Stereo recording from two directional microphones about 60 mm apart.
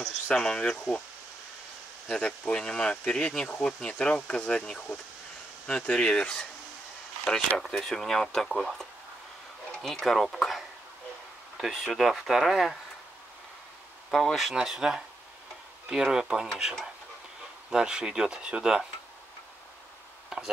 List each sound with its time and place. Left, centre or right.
0.0 s speech: centre
2.0 s speech: centre
9.9 s speech: centre
14.1 s speech: centre
17.6 s speech: centre
20.3 s tick-tock: centre